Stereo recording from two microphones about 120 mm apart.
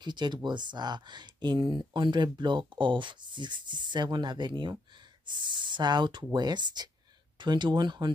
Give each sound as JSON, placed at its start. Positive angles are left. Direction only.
{"t": 0.0, "sound": "speech", "side_deg": -40}